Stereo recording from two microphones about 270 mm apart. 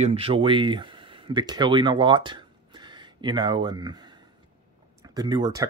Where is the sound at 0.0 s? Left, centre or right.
Right.